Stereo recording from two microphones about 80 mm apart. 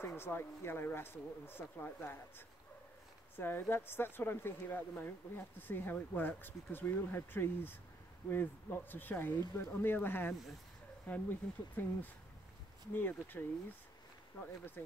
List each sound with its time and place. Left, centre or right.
0.0 s speech: left